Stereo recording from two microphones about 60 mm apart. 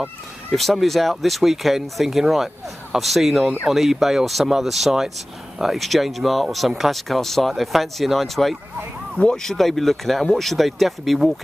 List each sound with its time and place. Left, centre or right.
0.5 s speech: centre